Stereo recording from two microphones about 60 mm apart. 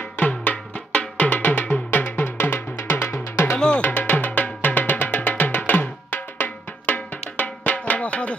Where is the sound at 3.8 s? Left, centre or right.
Left.